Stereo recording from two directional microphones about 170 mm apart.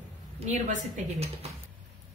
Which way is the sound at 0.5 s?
50° right (ahead or behind).